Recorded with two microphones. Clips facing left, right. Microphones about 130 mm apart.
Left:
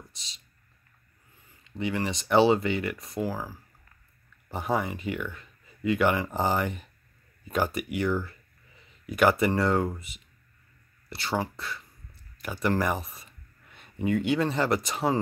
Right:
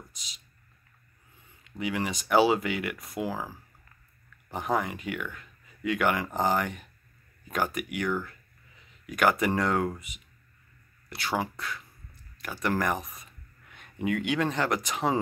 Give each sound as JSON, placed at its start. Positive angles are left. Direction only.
{"t": 1.6, "sound": "speech", "side_deg": -5}
{"t": 3.2, "sound": "speech", "side_deg": -15}
{"t": 4.5, "sound": "speech", "side_deg": 0}